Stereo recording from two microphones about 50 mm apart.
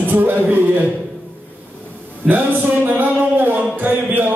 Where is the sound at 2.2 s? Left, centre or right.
Right.